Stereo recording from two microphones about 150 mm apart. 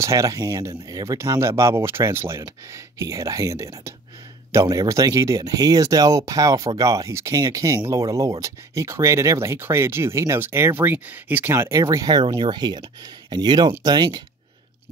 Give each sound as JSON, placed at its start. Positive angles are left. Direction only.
{"t": 0.0, "sound": "speech", "side_deg": -20}